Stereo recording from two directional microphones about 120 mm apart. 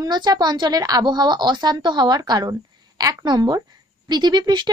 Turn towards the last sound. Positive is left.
turn(degrees=-35)  # may be behind; listen again after turning